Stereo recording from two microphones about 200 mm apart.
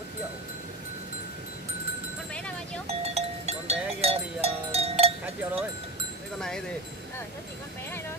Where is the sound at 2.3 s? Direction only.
5° left (ahead or behind).